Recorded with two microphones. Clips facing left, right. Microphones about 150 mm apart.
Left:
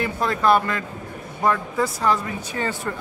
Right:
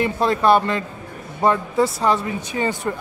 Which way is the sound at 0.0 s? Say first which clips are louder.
Right 3 dB; 20° right (ahead or behind).